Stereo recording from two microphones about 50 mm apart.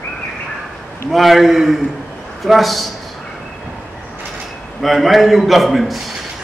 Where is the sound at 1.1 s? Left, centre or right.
Centre.